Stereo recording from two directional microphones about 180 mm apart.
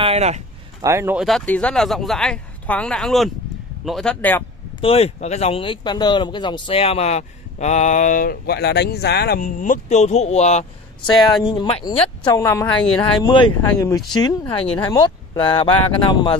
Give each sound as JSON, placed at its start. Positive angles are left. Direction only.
{"t": 0.0, "sound": "speech", "side_deg": -35}
{"t": 0.8, "sound": "speech", "side_deg": -15}
{"t": 1.2, "sound": "speech", "side_deg": 5}
{"t": 4.8, "sound": "speech", "side_deg": 35}
{"t": 12.3, "sound": "a woman's voice", "side_deg": 20}